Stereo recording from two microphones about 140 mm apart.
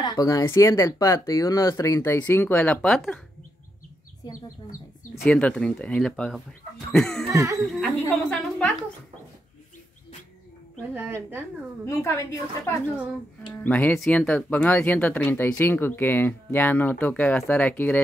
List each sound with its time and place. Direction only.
0.0 s speech: 30° left (ahead or behind); by 3.0 s 10° left (ahead or behind)
4.2 s speech: 30° left (ahead or behind)
5.2 s speech: 5° left (ahead or behind)
7.3 s speech: 20° right (ahead or behind)
7.8 s speech: 5° left (ahead or behind)
10.8 s a woman's voice: 15° right (ahead or behind)
11.8 s speech: 15° left (ahead or behind)